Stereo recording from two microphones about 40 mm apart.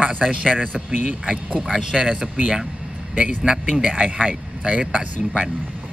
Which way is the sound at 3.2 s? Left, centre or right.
Right.